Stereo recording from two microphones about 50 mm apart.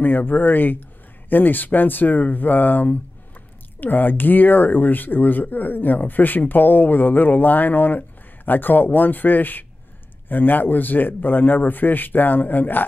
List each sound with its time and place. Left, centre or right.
0.0 s speech: left